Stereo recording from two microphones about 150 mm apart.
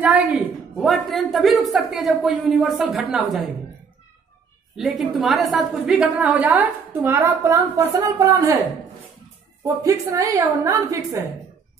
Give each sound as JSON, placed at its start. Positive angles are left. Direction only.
{"t": 0.7, "sound": "a man's voice", "side_deg": 0}
{"t": 4.7, "sound": "a woman's voice", "side_deg": 0}
{"t": 9.8, "sound": "a woman's voice", "side_deg": -20}